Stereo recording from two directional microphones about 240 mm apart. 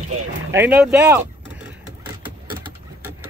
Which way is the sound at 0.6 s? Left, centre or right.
Centre.